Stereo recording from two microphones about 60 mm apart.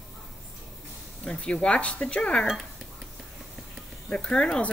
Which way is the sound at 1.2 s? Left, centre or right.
Centre.